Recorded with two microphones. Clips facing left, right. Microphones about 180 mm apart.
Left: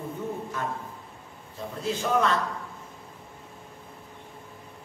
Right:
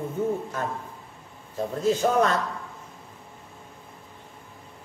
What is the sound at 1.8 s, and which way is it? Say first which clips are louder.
Speech: right 4 dB; 45° right (ahead or behind).